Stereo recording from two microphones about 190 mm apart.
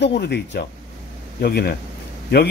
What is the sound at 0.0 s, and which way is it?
Speech, 65° left (ahead or behind).